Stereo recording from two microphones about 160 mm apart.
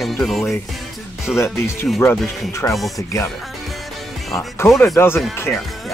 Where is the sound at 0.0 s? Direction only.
Centre (ahead or behind).